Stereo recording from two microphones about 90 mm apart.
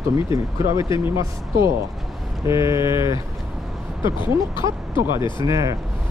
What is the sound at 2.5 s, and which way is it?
Speech, 35° right (ahead or behind).